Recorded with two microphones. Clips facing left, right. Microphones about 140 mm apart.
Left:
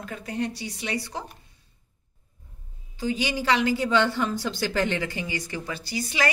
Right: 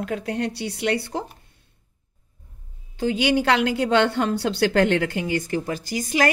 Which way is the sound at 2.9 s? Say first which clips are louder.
Right 7 dB; 65° right (ahead or behind).